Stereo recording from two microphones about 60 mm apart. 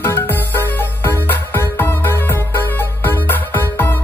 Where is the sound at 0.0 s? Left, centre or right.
Left.